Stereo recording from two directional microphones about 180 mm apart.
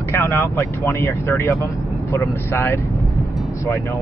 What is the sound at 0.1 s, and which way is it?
Speech, 15° left (ahead or behind).